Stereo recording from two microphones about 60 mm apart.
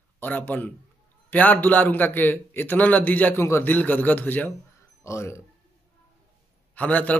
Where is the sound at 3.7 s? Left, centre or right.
Left.